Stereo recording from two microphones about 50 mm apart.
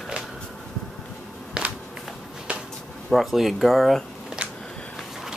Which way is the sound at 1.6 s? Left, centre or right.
Centre.